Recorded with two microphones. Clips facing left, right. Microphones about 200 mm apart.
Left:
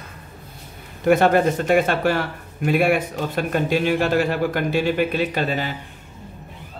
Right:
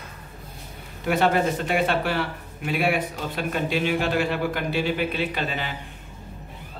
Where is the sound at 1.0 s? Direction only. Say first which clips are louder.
Left 6 dB; 45° left (ahead or behind).